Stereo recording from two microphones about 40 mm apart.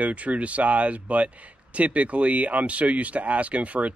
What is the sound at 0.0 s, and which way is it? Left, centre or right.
Speech, right.